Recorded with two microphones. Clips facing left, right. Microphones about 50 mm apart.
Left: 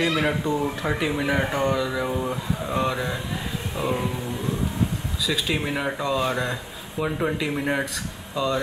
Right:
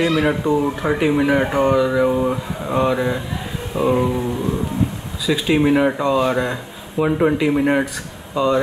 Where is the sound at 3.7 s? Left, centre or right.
Right.